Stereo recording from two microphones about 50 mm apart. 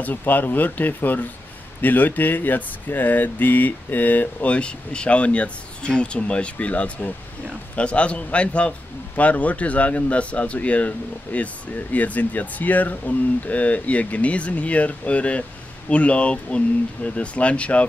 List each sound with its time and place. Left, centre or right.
0.0 s speech: left
4.5 s a man's voice: left